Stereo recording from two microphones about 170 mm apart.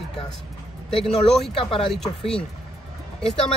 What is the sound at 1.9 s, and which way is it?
Speech, 5° left (ahead or behind).